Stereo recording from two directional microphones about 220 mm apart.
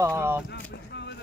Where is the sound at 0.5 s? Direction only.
50° left (ahead or behind).